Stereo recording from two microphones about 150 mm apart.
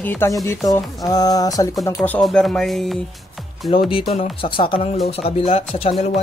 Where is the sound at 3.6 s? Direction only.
35° left (ahead or behind).